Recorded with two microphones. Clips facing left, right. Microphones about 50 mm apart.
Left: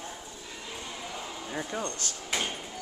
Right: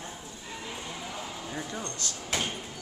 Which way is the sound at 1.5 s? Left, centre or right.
Centre.